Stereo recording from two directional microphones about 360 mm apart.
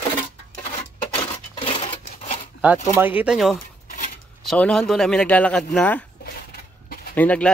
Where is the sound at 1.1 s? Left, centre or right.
Centre.